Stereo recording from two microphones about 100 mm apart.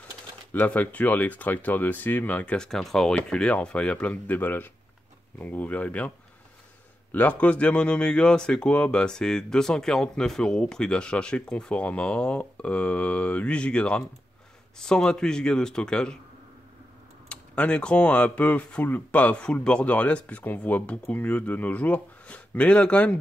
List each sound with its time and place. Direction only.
0.5 s speech: 20° left (ahead or behind)
17.3 s speech: 10° left (ahead or behind)